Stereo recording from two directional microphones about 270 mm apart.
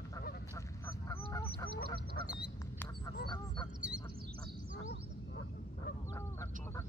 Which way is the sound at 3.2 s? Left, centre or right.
Centre.